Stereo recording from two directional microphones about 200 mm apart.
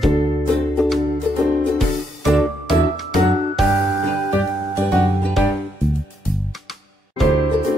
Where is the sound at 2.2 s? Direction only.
Centre (ahead or behind).